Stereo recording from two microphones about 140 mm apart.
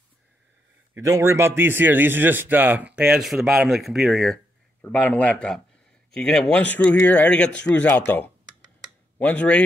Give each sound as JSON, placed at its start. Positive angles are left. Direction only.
{"t": 0.9, "sound": "a man's voice", "side_deg": -20}
{"t": 4.8, "sound": "speech", "side_deg": 10}